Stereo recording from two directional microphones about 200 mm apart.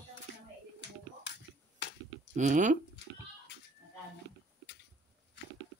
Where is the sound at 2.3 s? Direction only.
40° right (ahead or behind).